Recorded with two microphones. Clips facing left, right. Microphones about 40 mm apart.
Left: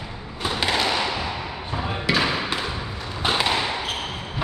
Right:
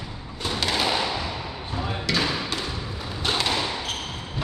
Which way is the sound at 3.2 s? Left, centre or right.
Centre.